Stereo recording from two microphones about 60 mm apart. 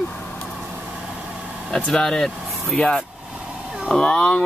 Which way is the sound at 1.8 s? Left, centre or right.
Centre.